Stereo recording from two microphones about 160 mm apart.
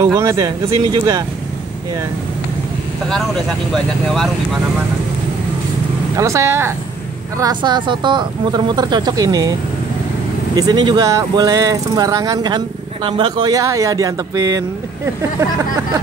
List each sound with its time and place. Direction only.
0.0 s speech: 20° right (ahead or behind)
3.1 s speech: centre (ahead or behind)
6.1 s speech: 20° right (ahead or behind)